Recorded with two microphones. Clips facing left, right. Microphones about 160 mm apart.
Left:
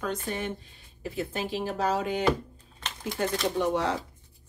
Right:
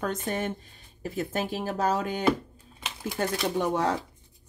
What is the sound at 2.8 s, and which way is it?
Speech, 10° right (ahead or behind).